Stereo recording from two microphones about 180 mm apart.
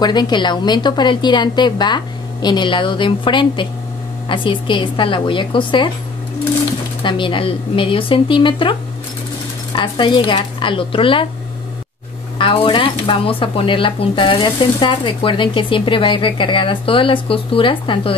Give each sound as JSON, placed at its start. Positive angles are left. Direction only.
{"t": 0.0, "sound": "speech", "side_deg": 25}
{"t": 7.0, "sound": "speech", "side_deg": 25}
{"t": 12.4, "sound": "speech", "side_deg": 30}